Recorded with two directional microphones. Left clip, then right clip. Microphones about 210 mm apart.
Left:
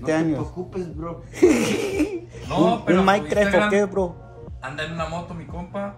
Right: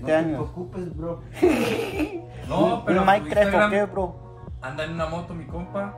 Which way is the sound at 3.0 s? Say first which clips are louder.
Right 3 dB; 30° left (ahead or behind).